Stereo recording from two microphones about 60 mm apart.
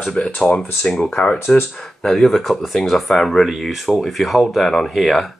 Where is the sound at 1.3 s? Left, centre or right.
Left.